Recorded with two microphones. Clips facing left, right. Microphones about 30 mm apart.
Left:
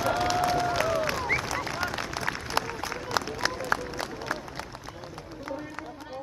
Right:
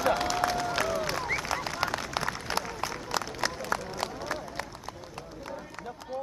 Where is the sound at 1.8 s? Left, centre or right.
Right.